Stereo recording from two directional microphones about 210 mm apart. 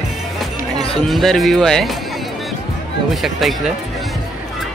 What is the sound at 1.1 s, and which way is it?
Speech, centre (ahead or behind).